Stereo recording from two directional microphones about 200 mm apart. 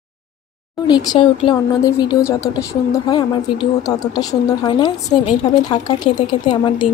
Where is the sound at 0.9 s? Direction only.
20° left (ahead or behind).